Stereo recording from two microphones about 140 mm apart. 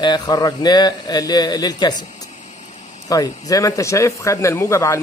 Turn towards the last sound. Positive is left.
turn(degrees=20)  # may be behind; listen again after turning